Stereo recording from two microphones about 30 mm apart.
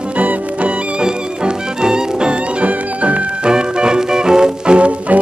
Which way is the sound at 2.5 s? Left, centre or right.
Right.